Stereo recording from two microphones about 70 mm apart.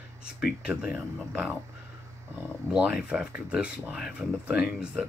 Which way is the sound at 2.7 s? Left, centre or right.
Centre.